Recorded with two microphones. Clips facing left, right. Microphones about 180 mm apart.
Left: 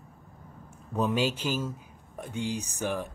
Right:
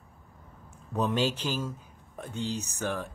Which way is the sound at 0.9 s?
10° left (ahead or behind).